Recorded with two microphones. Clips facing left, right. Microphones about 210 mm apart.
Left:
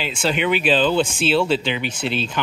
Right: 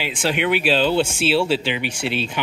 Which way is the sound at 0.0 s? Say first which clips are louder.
Even; 15° right (ahead or behind).